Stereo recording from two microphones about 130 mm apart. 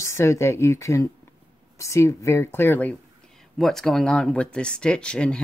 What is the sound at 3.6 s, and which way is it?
Speech, centre (ahead or behind).